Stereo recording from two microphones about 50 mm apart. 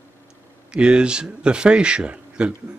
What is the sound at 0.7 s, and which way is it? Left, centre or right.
Speech, centre.